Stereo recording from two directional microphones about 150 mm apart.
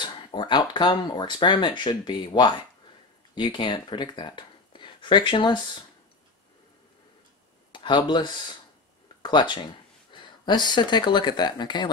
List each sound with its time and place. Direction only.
0.0 s speech: 30° left (ahead or behind)
7.7 s speech: 30° left (ahead or behind)